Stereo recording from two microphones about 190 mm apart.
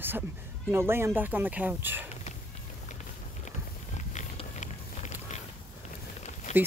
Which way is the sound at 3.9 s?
40° left (ahead or behind).